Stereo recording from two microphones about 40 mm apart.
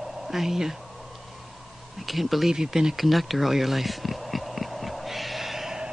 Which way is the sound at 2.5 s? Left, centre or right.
Centre.